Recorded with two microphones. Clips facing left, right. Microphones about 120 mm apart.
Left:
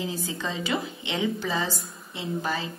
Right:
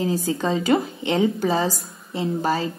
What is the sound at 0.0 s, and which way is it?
A woman's voice, 40° right (ahead or behind).